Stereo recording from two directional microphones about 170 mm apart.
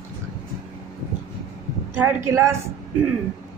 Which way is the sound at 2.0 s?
15° right (ahead or behind).